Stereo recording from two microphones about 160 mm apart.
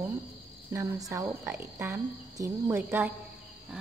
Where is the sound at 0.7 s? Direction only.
20° right (ahead or behind).